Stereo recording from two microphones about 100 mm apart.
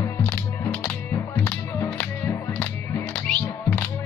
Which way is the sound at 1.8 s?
20° left (ahead or behind).